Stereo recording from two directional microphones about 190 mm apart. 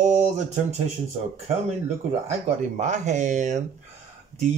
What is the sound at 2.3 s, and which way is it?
Speech, 40° right (ahead or behind).